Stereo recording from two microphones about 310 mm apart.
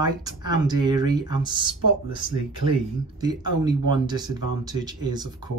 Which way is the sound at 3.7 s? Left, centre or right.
Centre.